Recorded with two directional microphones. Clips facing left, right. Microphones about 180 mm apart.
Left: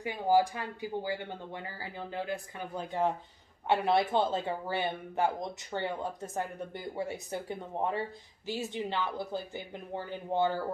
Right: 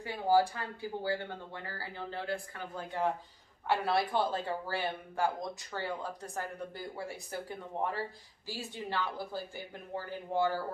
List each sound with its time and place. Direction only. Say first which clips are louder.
0.0 s speech: left 1 dB; 15° left (ahead or behind)